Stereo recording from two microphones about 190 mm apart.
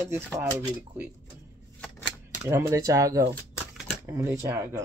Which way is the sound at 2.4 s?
15° right (ahead or behind).